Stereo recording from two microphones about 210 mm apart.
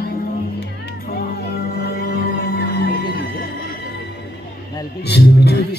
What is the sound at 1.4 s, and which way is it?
Music, 45° left (ahead or behind).